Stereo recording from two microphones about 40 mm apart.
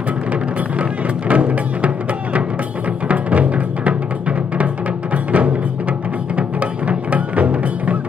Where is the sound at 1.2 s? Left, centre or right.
Right.